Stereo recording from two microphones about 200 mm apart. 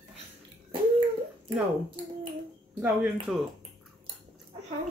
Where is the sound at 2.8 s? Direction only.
5° right (ahead or behind).